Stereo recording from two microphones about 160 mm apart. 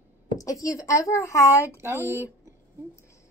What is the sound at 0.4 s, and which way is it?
A woman's voice, 20° left (ahead or behind).